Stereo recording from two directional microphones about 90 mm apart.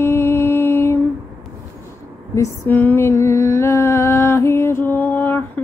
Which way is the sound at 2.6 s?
25° left (ahead or behind).